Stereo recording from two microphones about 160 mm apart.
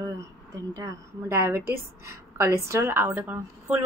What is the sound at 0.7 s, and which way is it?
A woman's voice, 20° right (ahead or behind).